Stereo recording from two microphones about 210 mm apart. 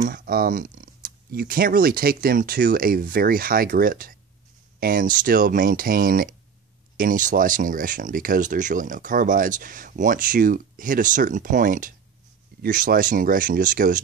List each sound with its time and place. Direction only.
0.1 s speech: 45° right (ahead or behind)